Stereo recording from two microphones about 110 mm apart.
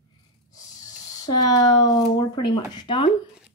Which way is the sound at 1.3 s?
40° left (ahead or behind).